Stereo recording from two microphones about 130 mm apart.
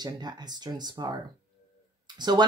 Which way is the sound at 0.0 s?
30° right (ahead or behind).